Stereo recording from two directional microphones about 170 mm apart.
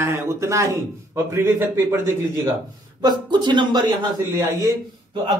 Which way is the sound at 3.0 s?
25° right (ahead or behind).